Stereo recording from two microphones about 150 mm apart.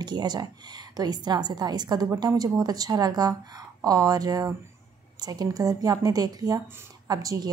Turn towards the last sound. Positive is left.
turn(degrees=-25)  # may be behind; listen again after turning